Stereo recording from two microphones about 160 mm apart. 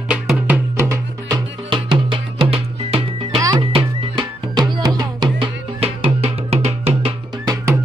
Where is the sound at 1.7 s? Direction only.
30° right (ahead or behind).